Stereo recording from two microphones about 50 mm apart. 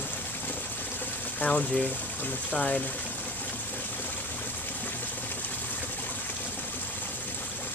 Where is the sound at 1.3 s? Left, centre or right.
Left.